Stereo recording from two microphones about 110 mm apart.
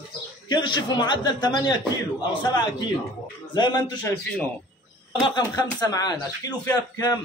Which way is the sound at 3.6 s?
40° left (ahead or behind).